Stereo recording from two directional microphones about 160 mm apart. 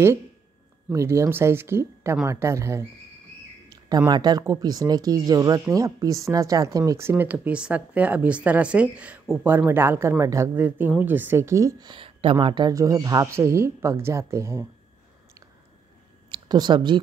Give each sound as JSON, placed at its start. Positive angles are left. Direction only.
{"t": 0.9, "sound": "speech", "side_deg": -20}
{"t": 16.3, "sound": "speech", "side_deg": -25}